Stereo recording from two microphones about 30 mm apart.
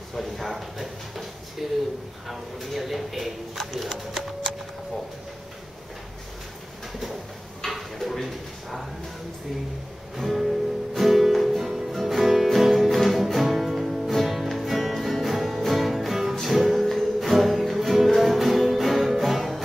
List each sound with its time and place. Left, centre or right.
0.2 s speech: centre
7.6 s drawer open or close: centre
10.1 s music: centre